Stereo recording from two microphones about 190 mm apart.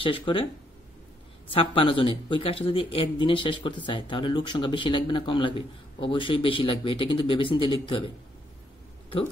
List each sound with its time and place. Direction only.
0.0 s speech: 25° left (ahead or behind)
1.5 s speech: 30° left (ahead or behind)